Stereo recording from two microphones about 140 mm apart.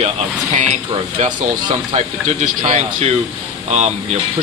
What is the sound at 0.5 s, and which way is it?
Speech, 55° right (ahead or behind).